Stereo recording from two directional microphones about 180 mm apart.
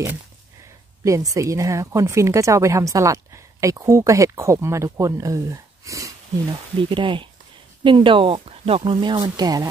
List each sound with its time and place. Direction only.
1.0 s speech: 20° right (ahead or behind)